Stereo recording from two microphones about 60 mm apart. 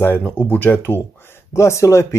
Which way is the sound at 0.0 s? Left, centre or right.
Left.